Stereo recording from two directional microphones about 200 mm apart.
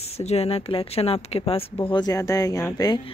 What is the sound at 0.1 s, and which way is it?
A woman's voice, 30° left (ahead or behind).